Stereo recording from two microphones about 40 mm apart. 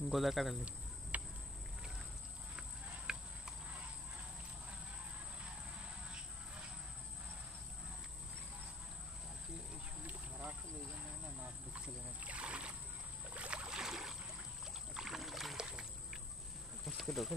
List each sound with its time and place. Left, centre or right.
0.1 s speech: centre
1.1 s insect: right
3.1 s a sound: centre
5.4 s a sound: right
11.7 s rowboat: right
13.3 s boat: right
13.7 s boat: centre
15.0 s rowboat: centre
15.5 s boat: centre
16.8 s insect: centre